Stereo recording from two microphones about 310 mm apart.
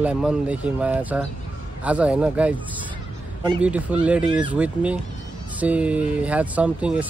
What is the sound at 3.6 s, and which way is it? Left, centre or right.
Speech, centre.